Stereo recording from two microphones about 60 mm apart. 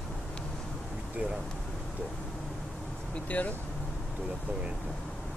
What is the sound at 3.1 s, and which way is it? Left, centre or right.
Speech, left.